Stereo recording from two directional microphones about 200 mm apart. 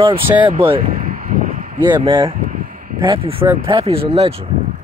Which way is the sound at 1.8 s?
20° right (ahead or behind).